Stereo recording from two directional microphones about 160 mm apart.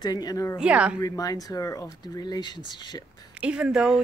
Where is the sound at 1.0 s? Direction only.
20° left (ahead or behind).